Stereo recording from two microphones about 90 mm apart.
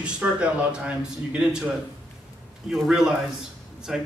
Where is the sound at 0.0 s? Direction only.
10° right (ahead or behind).